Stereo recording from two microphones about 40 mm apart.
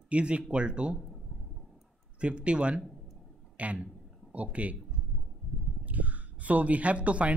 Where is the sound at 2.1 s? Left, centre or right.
Right.